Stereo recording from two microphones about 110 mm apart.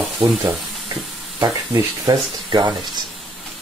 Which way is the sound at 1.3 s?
35° right (ahead or behind).